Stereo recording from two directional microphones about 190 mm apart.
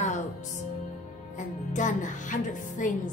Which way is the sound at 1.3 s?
40° left (ahead or behind).